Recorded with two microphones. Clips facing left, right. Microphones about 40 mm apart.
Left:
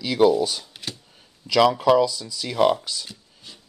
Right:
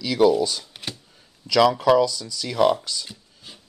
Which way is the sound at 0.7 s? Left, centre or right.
Right.